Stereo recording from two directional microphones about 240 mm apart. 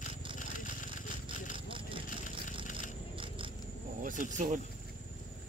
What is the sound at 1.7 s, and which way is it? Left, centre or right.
Vehicle, right.